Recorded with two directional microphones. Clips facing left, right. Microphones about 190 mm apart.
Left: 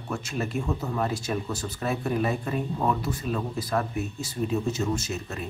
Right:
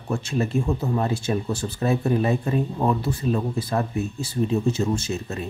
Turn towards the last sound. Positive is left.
turn(degrees=-25)  # may be behind; listen again after turning